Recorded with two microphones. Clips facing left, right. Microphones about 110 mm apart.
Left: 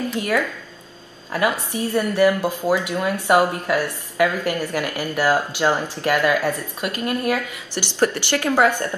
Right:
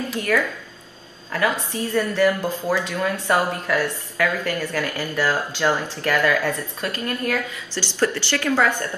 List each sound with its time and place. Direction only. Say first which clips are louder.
0.2 s a woman's voice: right 2 dB; 15° left (ahead or behind)